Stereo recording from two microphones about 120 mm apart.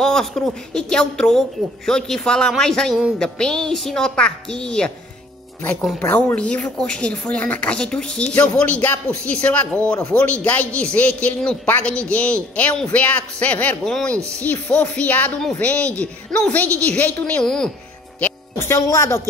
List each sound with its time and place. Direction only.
0.0 s a woman's voice: 5° left (ahead or behind)
18.2 s a woman's voice: 20° left (ahead or behind)